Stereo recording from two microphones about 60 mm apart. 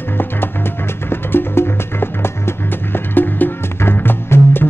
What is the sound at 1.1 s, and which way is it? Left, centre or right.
Music, left.